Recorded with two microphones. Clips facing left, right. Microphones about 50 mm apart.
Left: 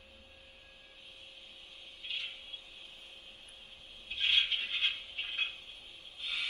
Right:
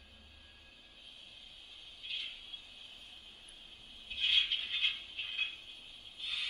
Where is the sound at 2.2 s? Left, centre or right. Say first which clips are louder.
Left 2 dB; left.